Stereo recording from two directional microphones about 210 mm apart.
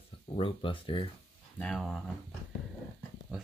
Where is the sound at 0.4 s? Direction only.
25° left (ahead or behind).